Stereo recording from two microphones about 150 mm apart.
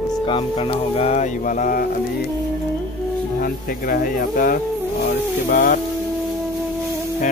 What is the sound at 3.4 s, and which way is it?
Speech, 70° left (ahead or behind).